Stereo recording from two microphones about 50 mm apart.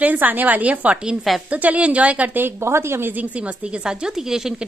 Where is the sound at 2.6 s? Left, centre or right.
Right.